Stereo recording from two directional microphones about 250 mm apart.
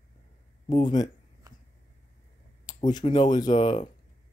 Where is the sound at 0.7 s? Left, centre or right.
Centre.